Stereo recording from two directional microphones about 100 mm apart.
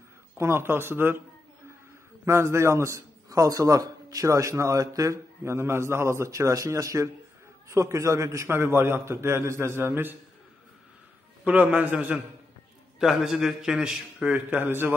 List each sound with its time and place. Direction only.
0.4 s a man's voice: 25° right (ahead or behind)
2.2 s a man's voice: 25° right (ahead or behind)
11.4 s a man's voice: 15° right (ahead or behind)
13.0 s a man's voice: centre (ahead or behind); by 15.0 s 20° right (ahead or behind)